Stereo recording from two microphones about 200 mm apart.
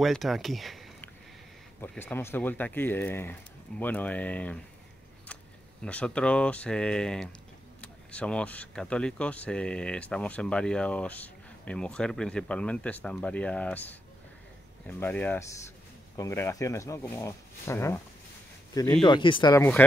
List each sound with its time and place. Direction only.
0.0 s speech: centre (ahead or behind)
1.8 s speech: 10° left (ahead or behind)
5.9 s speech: 5° left (ahead or behind)
19.0 s speech: 25° left (ahead or behind)